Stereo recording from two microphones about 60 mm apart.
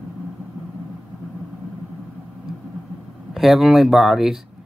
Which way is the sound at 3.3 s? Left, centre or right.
Centre.